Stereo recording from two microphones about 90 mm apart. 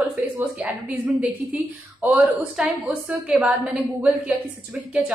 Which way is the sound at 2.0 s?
20° right (ahead or behind).